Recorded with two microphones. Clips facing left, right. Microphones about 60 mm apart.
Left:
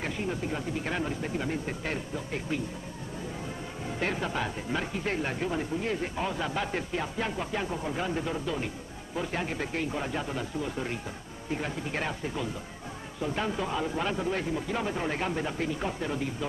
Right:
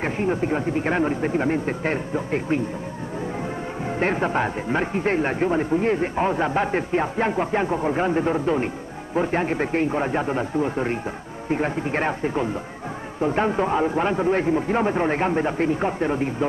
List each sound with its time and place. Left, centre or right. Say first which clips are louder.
0.0 s speech: right 9 dB; right
4.0 s speech: right 9 dB; right